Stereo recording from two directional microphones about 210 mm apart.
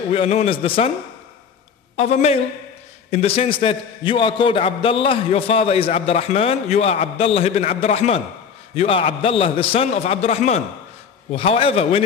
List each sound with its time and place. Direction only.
0.1 s a man's voice: 30° left (ahead or behind)
2.0 s a man's voice: 30° left (ahead or behind)